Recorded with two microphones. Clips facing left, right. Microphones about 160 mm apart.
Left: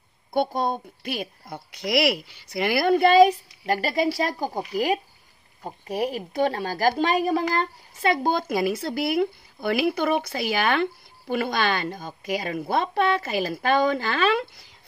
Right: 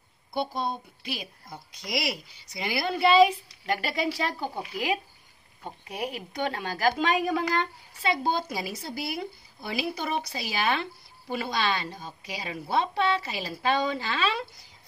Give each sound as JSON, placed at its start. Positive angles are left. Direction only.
{"t": 0.3, "sound": "a woman's voice", "side_deg": 50}